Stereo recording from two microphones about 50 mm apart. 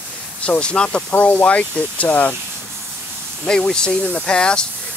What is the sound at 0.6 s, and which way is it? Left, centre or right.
Speech, centre.